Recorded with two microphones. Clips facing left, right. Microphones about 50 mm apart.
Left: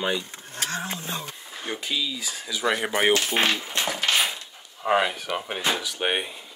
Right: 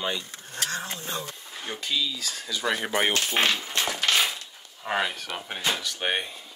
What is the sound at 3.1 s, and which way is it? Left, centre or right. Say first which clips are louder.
Speech: left 2 dB; left.